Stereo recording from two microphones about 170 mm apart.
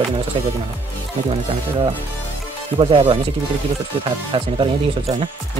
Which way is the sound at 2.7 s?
30° right (ahead or behind).